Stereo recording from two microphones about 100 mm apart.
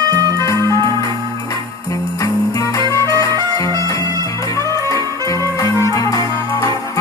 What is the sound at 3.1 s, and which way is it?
Music, 35° left (ahead or behind).